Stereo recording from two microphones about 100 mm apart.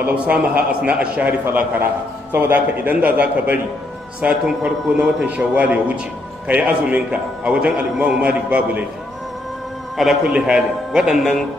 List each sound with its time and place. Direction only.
0.1 s a man's voice: 10° right (ahead or behind)
2.3 s a man's voice: 20° right (ahead or behind)
9.9 s a man's voice: 5° right (ahead or behind)